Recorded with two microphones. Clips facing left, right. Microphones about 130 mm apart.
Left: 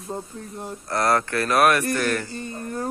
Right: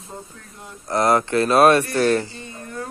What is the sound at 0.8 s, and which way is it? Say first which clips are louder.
Speech: right 4 dB; 20° right (ahead or behind).